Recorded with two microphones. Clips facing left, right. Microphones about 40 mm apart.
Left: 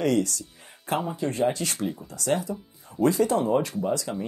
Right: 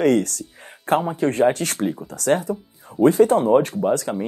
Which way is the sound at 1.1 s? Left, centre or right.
Right.